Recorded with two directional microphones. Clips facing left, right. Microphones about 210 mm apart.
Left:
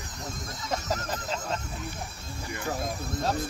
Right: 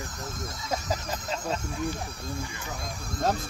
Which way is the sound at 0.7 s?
Centre (ahead or behind).